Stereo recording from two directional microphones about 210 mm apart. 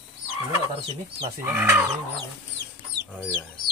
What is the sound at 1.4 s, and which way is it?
Speech, 10° right (ahead or behind).